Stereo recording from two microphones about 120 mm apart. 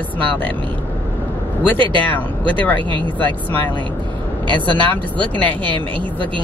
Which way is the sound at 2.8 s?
40° right (ahead or behind).